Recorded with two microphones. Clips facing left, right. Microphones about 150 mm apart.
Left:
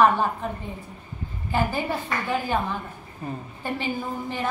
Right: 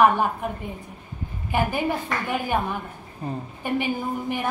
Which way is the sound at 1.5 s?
15° right (ahead or behind).